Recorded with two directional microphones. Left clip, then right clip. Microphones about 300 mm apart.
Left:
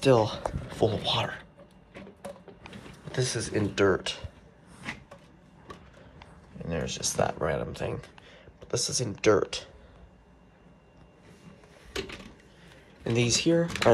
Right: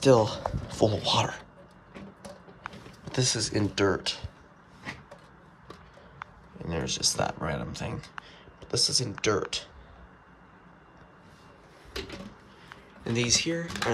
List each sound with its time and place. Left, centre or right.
0.0 s speech: centre
3.1 s speech: centre
6.6 s speech: centre
13.0 s speech: centre